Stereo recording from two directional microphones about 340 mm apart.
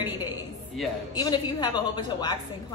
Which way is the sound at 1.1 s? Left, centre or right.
Centre.